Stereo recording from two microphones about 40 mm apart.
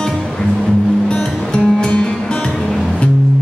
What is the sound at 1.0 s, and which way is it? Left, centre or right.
Music, left.